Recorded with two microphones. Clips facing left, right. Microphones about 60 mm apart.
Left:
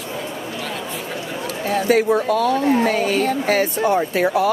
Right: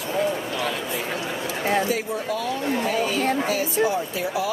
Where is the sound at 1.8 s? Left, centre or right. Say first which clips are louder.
Left 9 dB; left.